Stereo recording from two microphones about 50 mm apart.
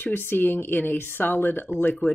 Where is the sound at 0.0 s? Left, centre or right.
Left.